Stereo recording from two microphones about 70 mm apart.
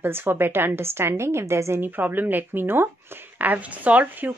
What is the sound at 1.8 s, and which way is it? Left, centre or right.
A woman's voice, right.